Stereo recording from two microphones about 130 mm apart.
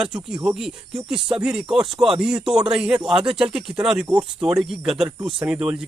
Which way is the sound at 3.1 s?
45° right (ahead or behind).